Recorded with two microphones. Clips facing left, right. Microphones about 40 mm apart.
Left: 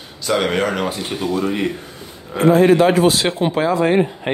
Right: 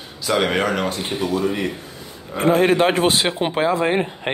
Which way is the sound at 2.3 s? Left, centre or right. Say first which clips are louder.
Left 4 dB; right.